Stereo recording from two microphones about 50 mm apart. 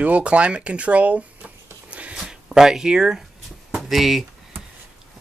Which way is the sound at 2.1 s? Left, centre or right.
Centre.